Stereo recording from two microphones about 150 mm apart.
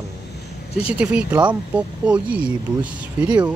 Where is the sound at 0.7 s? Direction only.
5° right (ahead or behind).